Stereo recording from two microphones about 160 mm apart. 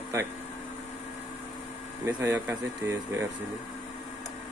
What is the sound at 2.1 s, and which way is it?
Speech, 15° right (ahead or behind).